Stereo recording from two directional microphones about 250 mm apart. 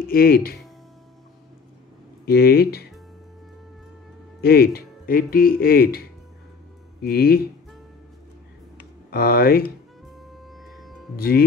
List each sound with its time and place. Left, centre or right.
0.0 s speech: left
2.2 s speech: left
4.4 s speech: left
9.1 s speech: left
10.0 s music: centre
11.1 s speech: left